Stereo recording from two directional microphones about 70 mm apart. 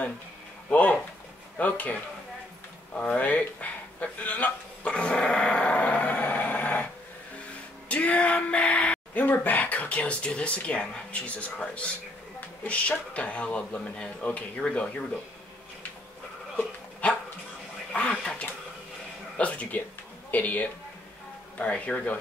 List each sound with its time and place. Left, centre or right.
0.7 s speech: left
3.0 s speech: centre
4.0 s dog: left
7.9 s speech: centre
17.0 s dog: centre
17.9 s a sound: left
19.3 s speech: centre